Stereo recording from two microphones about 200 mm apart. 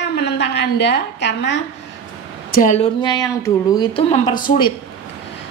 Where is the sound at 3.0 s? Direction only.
20° left (ahead or behind).